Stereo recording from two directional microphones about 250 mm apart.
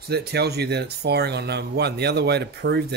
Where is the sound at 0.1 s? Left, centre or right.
Right.